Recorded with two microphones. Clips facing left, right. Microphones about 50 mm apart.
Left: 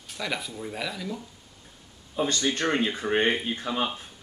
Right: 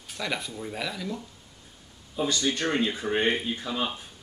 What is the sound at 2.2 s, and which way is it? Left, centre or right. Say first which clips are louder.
Speech: left 1 dB; left.